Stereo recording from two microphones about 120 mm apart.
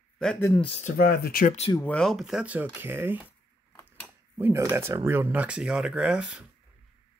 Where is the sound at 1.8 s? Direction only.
10° left (ahead or behind).